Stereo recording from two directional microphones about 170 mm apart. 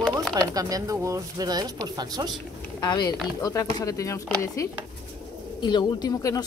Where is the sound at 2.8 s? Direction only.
25° left (ahead or behind).